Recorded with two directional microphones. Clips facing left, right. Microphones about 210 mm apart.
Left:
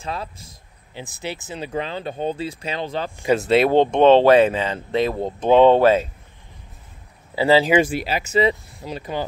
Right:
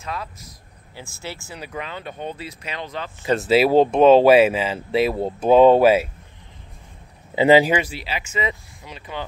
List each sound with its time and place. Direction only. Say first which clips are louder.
0.0 s speech: left 2 dB; 30° left (ahead or behind)
0.9 s speech: left 4 dB; 20° left (ahead or behind)
3.3 s speech: right 1 dB; 5° right (ahead or behind)
7.3 s speech: right 2 dB; 15° right (ahead or behind)
7.8 s speech: left 7 dB; 50° left (ahead or behind)